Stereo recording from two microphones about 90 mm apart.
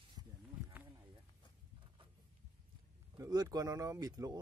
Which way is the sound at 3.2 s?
45° right (ahead or behind).